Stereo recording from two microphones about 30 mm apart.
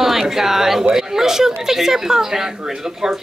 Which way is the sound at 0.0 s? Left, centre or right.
Centre.